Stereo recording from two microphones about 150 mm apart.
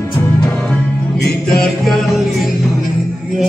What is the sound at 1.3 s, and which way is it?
Music, 5° left (ahead or behind).